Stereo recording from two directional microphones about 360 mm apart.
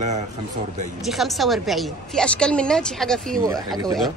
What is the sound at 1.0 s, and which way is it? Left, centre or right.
Speech, centre.